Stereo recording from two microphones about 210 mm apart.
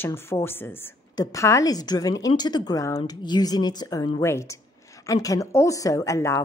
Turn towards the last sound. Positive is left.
turn(degrees=15)  # may be behind; listen again after turning